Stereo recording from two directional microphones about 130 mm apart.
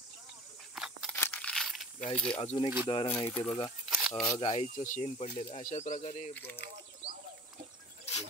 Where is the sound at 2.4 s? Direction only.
45° left (ahead or behind).